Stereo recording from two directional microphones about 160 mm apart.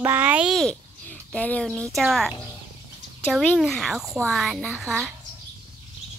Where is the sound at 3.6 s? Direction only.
Centre (ahead or behind).